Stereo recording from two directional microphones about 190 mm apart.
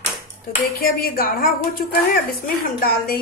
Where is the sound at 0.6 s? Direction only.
50° left (ahead or behind).